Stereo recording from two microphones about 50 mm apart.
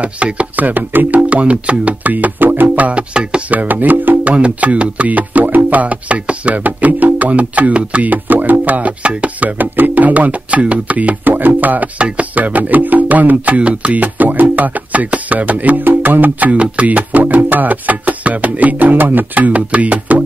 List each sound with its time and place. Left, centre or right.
0.0 s speech: right
1.3 s speech: right
2.9 s music: right
4.3 s speech: right
13.6 s speech: right